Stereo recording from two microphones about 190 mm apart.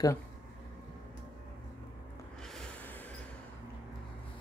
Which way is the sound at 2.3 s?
5° left (ahead or behind).